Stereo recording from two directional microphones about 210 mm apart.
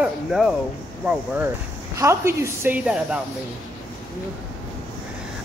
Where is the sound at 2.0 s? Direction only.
15° right (ahead or behind).